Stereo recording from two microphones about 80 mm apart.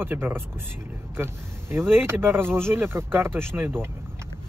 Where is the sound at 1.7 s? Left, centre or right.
Right.